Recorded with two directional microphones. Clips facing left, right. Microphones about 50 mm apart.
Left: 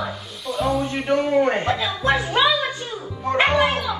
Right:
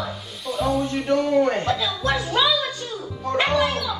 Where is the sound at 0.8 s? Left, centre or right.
Left.